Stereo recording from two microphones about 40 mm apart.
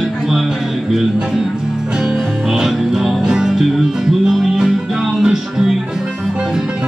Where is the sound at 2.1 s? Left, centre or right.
Centre.